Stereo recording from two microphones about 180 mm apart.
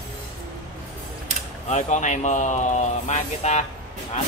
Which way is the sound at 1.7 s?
40° left (ahead or behind).